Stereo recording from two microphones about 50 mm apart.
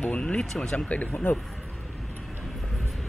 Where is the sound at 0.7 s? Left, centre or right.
Left.